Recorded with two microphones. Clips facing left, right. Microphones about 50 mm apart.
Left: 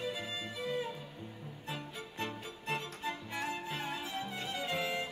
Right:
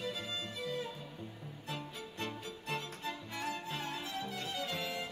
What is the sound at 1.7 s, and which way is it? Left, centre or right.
Music, centre.